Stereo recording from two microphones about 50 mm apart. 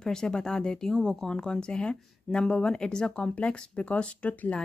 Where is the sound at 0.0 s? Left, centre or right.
Centre.